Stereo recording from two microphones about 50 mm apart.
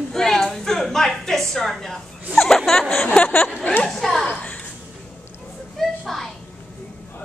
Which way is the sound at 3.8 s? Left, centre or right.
Centre.